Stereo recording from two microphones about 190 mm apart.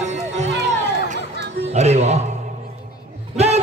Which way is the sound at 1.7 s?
35° right (ahead or behind).